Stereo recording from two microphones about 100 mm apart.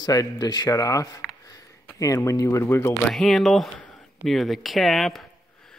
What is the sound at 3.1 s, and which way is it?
Speech, centre (ahead or behind).